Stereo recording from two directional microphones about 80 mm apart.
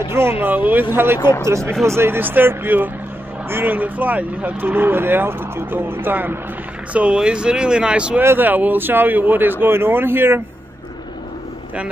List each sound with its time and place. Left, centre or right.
0.1 s speech: right
1.6 s speech: centre
1.9 s speech: right
6.9 s speech: centre
8.2 s speech: right